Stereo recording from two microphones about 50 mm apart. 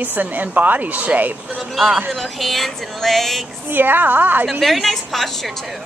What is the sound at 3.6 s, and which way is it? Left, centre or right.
Speech, right.